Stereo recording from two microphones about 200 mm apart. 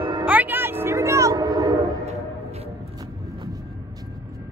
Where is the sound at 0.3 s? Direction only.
10° right (ahead or behind).